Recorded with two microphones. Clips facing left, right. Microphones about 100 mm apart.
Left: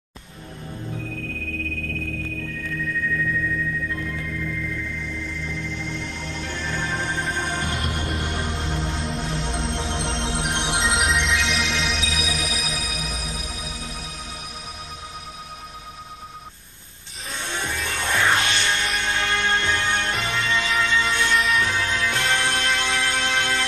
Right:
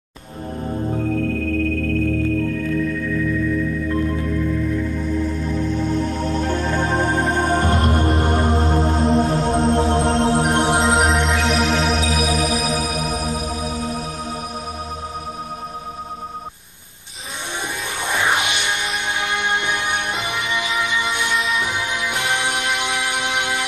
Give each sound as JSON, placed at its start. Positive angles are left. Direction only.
{"t": 0.7, "sound": "music", "side_deg": -40}
{"t": 2.3, "sound": "music", "side_deg": -45}
{"t": 17.8, "sound": "music", "side_deg": -15}
{"t": 21.4, "sound": "music", "side_deg": 0}
{"t": 21.6, "sound": "music", "side_deg": -15}